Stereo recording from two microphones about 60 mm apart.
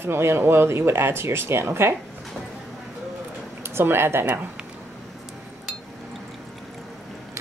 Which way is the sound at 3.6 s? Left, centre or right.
Right.